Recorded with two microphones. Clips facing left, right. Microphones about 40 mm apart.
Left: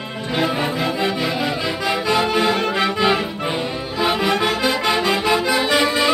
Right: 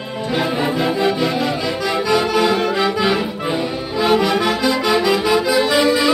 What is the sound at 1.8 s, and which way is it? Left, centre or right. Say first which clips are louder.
Accordion: right 1 dB; centre.